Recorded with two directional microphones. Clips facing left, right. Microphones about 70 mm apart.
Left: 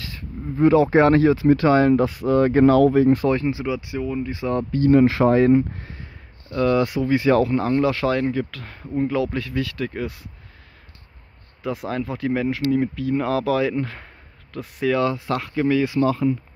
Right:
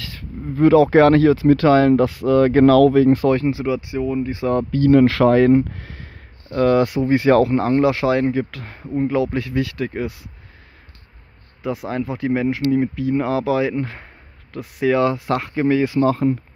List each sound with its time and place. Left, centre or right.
0.0 s speech: right
3.6 s speech: centre
4.0 s speech: centre
4.4 s speech: right
6.5 s speech: right
7.8 s speech: centre
11.6 s speech: centre; by 15.2 s right
15.2 s speech: right